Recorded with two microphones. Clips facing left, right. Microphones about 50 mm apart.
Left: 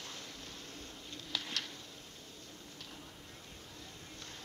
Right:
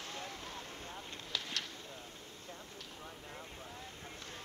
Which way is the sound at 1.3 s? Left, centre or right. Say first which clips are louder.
Left 1 dB; centre.